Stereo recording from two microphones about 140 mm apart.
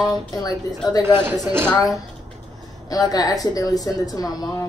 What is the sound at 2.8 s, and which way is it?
Speech, 25° left (ahead or behind).